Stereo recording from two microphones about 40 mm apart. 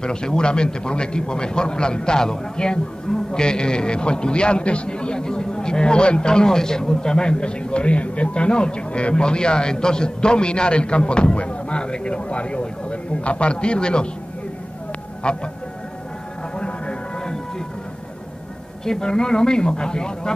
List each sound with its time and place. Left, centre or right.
0.0 s a man's voice: left
15.2 s a man's voice: left
16.5 s music: left
18.9 s a man's voice: centre